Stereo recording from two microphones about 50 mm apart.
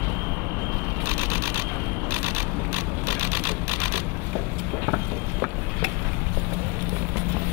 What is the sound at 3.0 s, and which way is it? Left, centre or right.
Vehicle, right.